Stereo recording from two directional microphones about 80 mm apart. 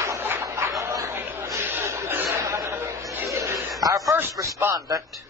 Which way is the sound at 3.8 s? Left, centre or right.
Right.